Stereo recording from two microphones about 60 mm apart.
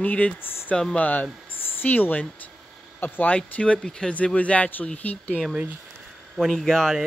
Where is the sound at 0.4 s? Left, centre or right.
Left.